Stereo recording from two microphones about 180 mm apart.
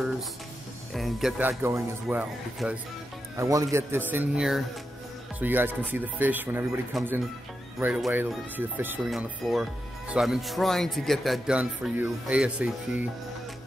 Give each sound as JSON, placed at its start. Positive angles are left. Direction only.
{"t": 0.9, "sound": "speech", "side_deg": 0}
{"t": 1.4, "sound": "speech", "side_deg": -10}